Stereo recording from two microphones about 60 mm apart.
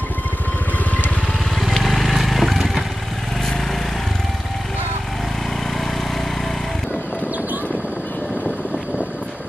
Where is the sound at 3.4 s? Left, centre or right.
Centre.